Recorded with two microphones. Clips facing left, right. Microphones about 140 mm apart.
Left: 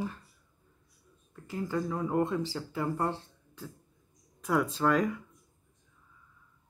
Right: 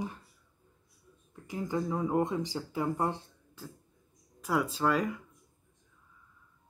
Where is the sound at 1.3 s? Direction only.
15° right (ahead or behind).